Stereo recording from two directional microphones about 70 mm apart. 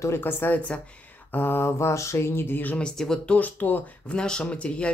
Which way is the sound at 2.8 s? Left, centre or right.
Centre.